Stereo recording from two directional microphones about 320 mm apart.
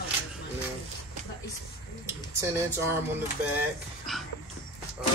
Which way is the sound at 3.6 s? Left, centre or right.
Centre.